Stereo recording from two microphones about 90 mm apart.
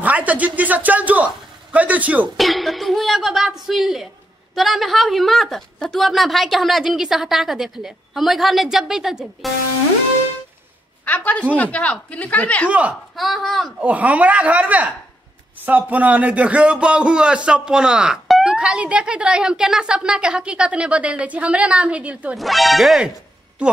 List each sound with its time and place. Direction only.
0.0 s a man's voice: 15° right (ahead or behind)
2.3 s a woman's voice: centre (ahead or behind)
11.1 s speech: 15° left (ahead or behind)
12.6 s a man's voice: 15° right (ahead or behind)
13.1 s a woman's voice: centre (ahead or behind)
13.7 s a man's voice: 15° right (ahead or behind)
22.4 s a woman's voice: centre (ahead or behind)